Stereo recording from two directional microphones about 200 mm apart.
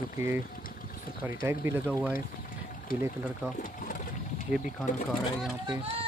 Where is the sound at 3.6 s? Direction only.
40° left (ahead or behind).